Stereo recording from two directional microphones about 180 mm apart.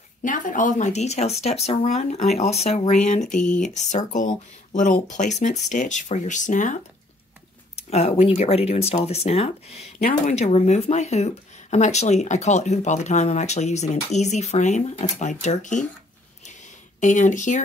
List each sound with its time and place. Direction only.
0.2 s speech: 45° left (ahead or behind)
3.3 s speech: 5° left (ahead or behind)
3.6 s speech: 40° left (ahead or behind)
17.0 s speech: 45° left (ahead or behind)